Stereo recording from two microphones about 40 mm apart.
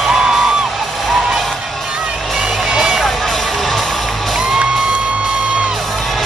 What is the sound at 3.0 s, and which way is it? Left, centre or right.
Music, centre.